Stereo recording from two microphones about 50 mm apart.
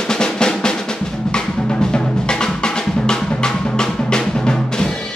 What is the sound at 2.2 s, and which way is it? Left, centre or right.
Music, centre.